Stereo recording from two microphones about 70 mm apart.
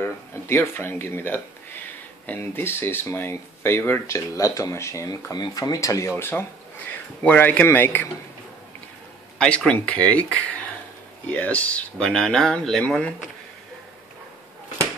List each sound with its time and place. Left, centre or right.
0.0 s speech: left
4.1 s speech: left
7.2 s a man's voice: left
9.7 s a man's voice: centre
12.0 s speech: centre